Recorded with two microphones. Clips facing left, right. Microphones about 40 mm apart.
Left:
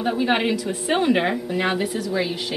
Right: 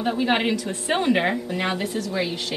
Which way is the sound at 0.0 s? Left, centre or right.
Centre.